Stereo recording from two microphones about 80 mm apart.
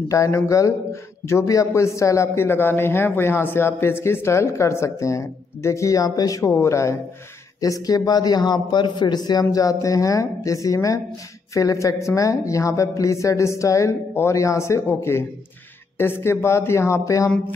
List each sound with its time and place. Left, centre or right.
0.1 s a man's voice: left
7.6 s a man's voice: left